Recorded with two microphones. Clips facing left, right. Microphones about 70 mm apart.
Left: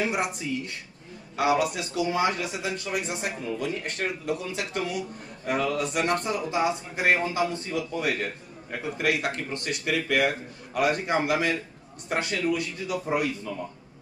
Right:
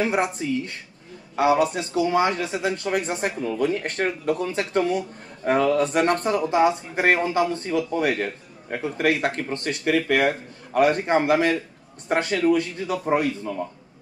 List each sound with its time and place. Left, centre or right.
0.0 s speech: right